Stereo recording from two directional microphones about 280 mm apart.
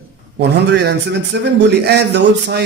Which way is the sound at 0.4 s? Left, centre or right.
Right.